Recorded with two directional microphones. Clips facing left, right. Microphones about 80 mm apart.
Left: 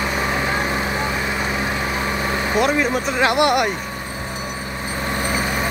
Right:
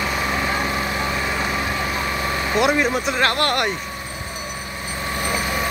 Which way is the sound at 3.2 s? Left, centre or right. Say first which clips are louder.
Left 5 dB; centre.